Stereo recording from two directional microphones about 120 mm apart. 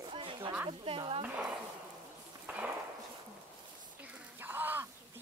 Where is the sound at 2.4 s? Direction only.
10° right (ahead or behind).